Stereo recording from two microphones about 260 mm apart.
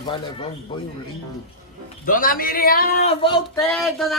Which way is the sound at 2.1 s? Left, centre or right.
Left.